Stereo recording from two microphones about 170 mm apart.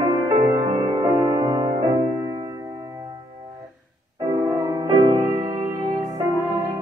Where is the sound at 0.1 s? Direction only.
20° right (ahead or behind).